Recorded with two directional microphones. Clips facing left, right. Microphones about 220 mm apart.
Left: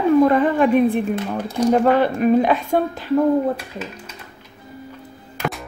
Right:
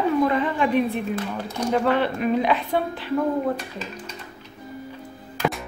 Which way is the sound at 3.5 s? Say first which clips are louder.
Left 1 dB; 5° left (ahead or behind).